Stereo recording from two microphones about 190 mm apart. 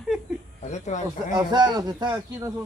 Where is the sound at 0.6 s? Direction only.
40° left (ahead or behind).